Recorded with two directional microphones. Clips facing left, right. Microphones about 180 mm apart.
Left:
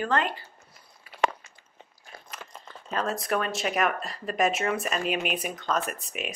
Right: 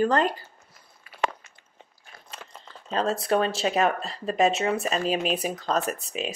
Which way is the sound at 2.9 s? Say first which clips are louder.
Right 4 dB; 30° right (ahead or behind).